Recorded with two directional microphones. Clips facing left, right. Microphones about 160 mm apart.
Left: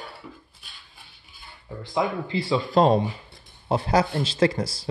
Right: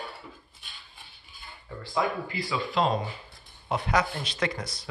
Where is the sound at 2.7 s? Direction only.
40° left (ahead or behind).